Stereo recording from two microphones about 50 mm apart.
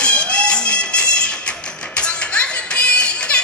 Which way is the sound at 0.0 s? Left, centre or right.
Centre.